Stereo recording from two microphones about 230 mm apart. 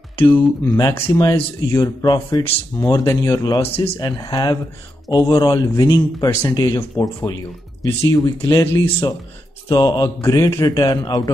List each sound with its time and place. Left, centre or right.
0.3 s speech: centre